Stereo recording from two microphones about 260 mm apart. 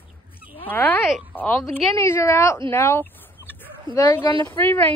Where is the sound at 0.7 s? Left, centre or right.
Centre.